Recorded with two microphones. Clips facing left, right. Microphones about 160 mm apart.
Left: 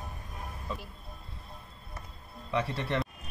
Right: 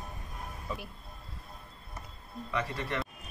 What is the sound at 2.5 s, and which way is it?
Speech, 30° left (ahead or behind).